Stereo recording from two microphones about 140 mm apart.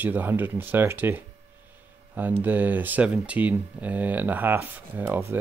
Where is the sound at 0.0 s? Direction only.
15° right (ahead or behind).